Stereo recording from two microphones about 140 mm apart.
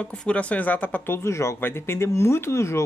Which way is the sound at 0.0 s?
10° left (ahead or behind).